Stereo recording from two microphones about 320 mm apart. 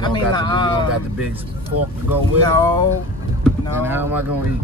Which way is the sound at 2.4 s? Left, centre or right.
Centre.